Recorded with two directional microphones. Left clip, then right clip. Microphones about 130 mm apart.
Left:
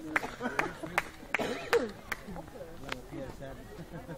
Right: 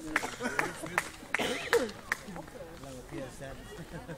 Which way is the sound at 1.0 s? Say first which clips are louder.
Even; 45° left (ahead or behind).